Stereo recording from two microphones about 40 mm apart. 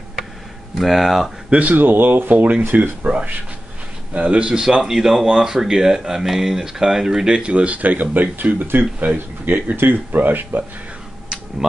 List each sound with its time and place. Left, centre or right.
0.7 s speech: centre
1.5 s a man's voice: right
1.8 s speech: right
4.1 s a man's voice: right
4.8 s speech: centre
7.3 s speech: right